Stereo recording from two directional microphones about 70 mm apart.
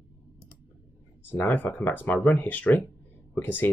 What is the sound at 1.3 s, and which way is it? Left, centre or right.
Speech, left.